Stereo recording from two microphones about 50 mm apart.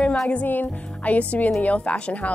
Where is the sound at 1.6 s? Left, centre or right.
Left.